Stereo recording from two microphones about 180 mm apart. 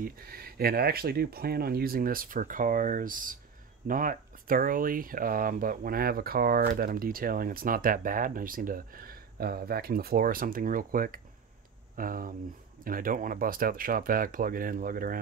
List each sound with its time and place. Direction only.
0.0 s speech: 55° right (ahead or behind)